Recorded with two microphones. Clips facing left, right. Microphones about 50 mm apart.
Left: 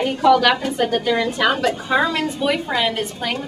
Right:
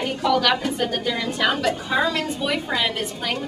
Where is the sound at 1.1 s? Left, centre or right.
Centre.